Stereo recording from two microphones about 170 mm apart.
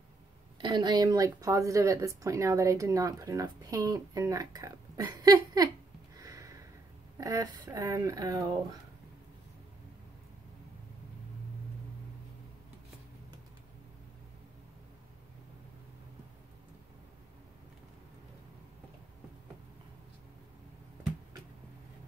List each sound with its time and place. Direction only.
0.6 s speech: 25° right (ahead or behind)
6.1 s sniff: 20° right (ahead or behind)
7.2 s speech: 20° right (ahead or behind)